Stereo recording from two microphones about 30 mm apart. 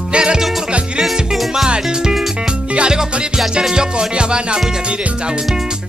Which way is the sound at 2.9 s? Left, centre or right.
Right.